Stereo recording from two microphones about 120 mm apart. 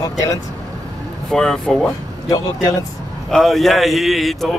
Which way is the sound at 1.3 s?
5° left (ahead or behind).